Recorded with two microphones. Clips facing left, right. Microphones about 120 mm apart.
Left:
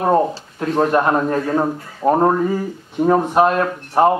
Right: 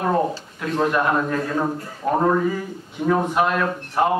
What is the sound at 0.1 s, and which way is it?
Speech, 35° left (ahead or behind).